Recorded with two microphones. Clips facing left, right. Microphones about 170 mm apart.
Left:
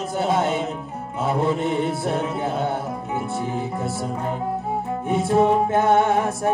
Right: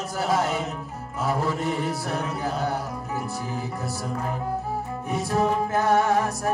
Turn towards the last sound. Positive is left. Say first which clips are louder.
# left 3 dB
turn(degrees=25)  # may be behind; listen again after turning